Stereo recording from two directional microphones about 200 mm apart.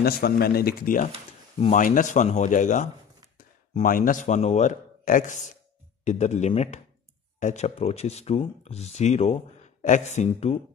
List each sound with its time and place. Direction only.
0.0 s speech: 50° left (ahead or behind); by 10.6 s 30° left (ahead or behind)